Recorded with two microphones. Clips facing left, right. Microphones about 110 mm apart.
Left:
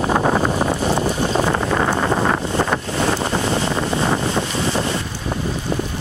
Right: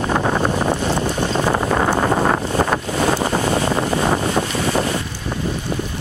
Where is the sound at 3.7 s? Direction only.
30° right (ahead or behind).